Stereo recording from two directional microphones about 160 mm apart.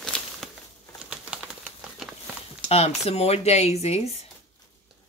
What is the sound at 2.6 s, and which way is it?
Speech, 40° left (ahead or behind).